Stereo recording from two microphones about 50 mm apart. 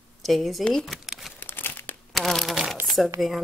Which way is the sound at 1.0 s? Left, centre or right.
Centre.